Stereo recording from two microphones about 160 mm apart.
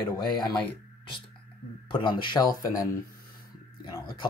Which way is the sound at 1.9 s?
30° left (ahead or behind).